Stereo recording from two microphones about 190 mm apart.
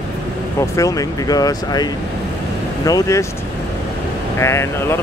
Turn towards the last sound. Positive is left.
turn(degrees=15)  # may be behind; listen again after turning